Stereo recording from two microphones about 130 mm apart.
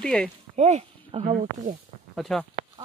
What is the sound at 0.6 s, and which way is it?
Speech, 60° right (ahead or behind).